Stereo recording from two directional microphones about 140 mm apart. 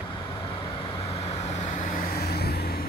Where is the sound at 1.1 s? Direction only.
50° left (ahead or behind); by 2.8 s 90° left.